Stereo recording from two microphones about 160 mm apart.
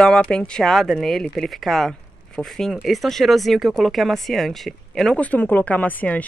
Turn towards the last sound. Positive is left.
turn(degrees=10)  # may be behind; listen again after turning